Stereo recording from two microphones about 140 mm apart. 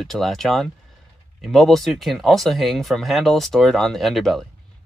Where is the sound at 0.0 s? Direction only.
Centre (ahead or behind).